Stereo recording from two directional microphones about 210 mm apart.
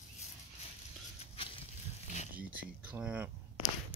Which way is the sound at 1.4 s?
25° left (ahead or behind).